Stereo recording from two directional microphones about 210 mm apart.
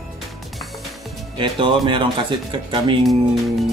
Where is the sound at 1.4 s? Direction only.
25° right (ahead or behind).